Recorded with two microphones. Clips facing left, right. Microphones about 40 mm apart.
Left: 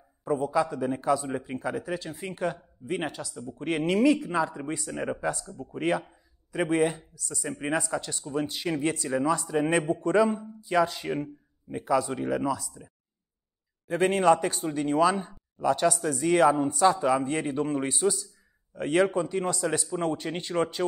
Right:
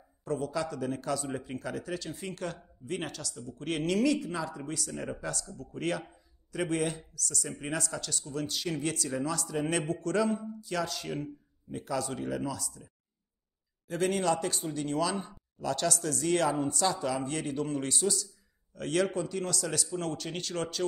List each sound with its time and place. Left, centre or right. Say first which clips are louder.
0.2 s a man's voice: left 7 dB; centre